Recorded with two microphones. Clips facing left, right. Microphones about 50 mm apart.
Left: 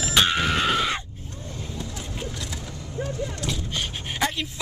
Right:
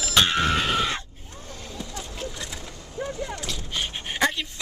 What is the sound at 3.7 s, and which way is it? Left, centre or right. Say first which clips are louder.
Gasp: even; centre.